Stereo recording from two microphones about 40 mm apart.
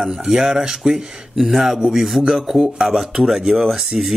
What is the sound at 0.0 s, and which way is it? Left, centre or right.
A man's voice, centre.